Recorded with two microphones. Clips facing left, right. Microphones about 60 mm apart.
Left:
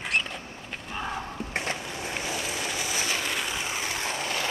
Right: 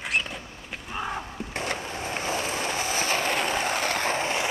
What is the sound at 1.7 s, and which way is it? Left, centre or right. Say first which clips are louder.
Vehicle: right 2 dB; right.